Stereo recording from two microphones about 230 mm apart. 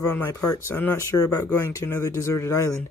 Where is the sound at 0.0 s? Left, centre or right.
Centre.